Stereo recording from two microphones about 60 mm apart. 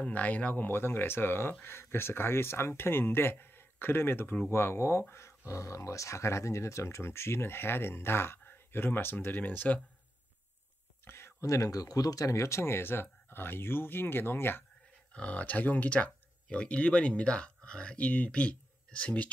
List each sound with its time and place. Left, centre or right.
0.0 s speech: left
5.5 s speech: left
11.1 s speech: left
15.1 s speech: left